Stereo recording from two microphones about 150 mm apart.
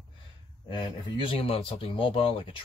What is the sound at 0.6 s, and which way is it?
Speech, 35° left (ahead or behind).